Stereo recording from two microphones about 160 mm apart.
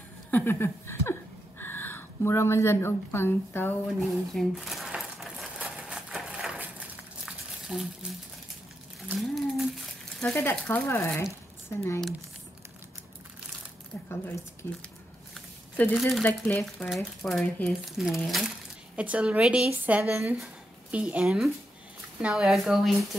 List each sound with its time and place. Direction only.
0.3 s a woman's voice: 10° left (ahead or behind)
4.3 s crumpling: centre (ahead or behind)
9.1 s speech: centre (ahead or behind); by 12.0 s 15° left (ahead or behind)
14.0 s a woman's voice: 15° left (ahead or behind)
15.7 s speech: 10° left (ahead or behind)
16.6 s speech: centre (ahead or behind)